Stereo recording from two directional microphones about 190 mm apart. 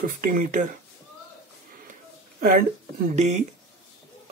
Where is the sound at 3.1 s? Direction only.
40° right (ahead or behind).